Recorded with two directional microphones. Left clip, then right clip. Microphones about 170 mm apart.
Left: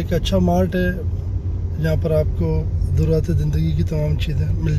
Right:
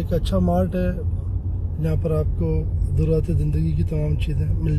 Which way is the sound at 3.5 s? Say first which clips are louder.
Left 2 dB; 45° left (ahead or behind).